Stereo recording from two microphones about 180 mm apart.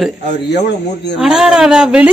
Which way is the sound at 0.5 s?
70° left (ahead or behind).